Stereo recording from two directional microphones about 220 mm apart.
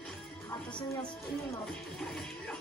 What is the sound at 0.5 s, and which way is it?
A woman's voice, 20° left (ahead or behind).